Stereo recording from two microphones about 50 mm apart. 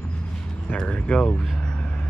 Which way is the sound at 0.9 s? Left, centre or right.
Centre.